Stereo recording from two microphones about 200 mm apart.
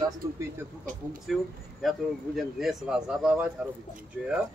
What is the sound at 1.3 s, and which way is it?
A man's voice, centre (ahead or behind).